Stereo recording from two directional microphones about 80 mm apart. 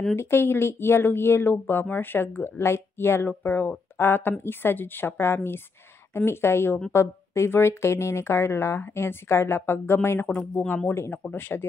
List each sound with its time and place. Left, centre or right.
0.1 s speech: left
10.4 s speech: centre
10.9 s speech: left